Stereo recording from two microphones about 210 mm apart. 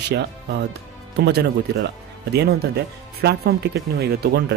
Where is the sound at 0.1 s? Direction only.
55° right (ahead or behind).